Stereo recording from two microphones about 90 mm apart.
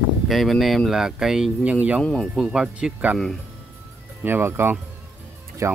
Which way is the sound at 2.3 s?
5° right (ahead or behind).